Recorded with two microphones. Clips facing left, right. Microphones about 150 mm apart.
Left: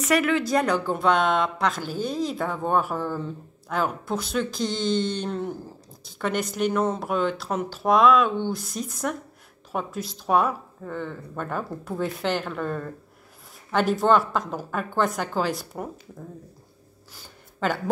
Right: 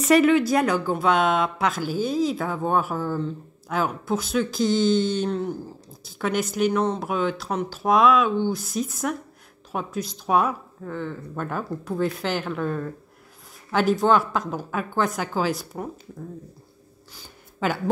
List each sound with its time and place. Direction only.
0.0 s speech: 30° right (ahead or behind)
0.3 s speech: 10° right (ahead or behind)
17.6 s a woman's voice: 5° right (ahead or behind)